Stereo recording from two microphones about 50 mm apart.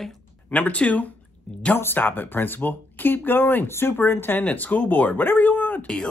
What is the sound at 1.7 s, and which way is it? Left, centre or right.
Speech, left.